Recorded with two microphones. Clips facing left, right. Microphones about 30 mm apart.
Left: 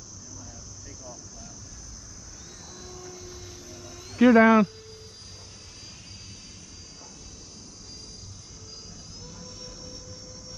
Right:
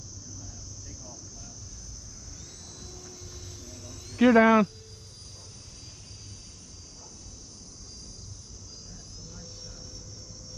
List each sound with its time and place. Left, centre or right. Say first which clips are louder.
2.8 s aircraft: left 6 dB; centre
4.2 s speech: left 2 dB; centre
9.2 s aircraft: left 3 dB; left